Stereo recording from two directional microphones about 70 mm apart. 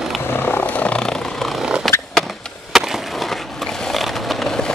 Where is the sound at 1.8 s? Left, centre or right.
Centre.